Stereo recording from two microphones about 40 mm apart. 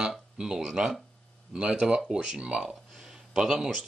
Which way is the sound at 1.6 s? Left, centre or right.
Right.